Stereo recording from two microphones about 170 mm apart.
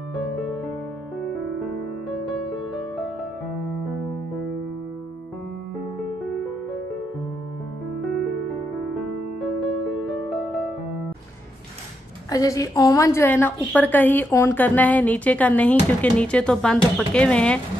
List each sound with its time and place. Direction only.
2.0 s music: centre (ahead or behind)
9.4 s music: centre (ahead or behind)
12.3 s a woman's voice: 20° left (ahead or behind)